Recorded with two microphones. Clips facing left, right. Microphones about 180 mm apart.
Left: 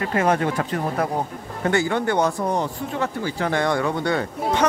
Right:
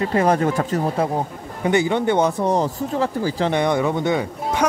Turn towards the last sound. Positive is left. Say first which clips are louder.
# right 2 dB
turn(degrees=-20)  # may be behind; listen again after turning